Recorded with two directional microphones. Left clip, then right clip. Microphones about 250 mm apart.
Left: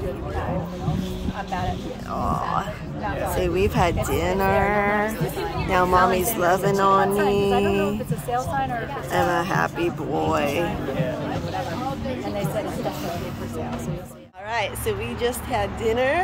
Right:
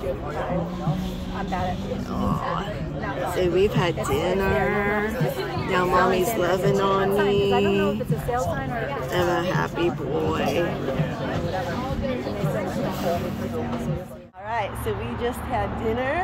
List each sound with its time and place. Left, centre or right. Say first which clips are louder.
3.5 s speech: left 2 dB; centre
9.1 s speech: left 3 dB; centre
14.5 s speech: left 2 dB; centre